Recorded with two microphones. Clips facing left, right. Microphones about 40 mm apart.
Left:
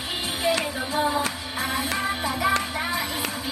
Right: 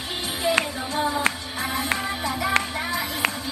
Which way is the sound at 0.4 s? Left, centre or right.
Centre.